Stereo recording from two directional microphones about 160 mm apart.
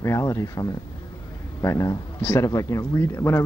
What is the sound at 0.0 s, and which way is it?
Speech, 20° left (ahead or behind).